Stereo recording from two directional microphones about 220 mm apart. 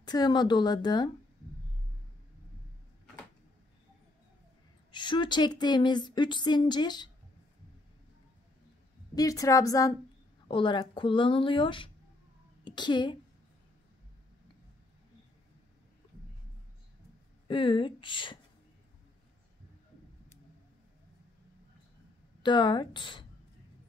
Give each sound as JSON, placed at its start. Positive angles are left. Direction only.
{"t": 0.0, "sound": "speech", "side_deg": 20}
{"t": 4.9, "sound": "speech", "side_deg": 20}
{"t": 9.1, "sound": "a woman's voice", "side_deg": 15}
{"t": 17.5, "sound": "speech", "side_deg": 20}
{"t": 22.4, "sound": "speech", "side_deg": 20}